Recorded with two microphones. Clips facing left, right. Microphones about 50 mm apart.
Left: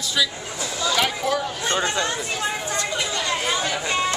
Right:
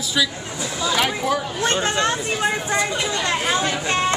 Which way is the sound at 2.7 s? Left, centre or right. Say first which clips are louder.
Right 3 dB; centre.